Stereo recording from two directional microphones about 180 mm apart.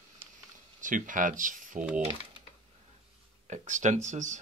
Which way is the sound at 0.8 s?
45° right (ahead or behind).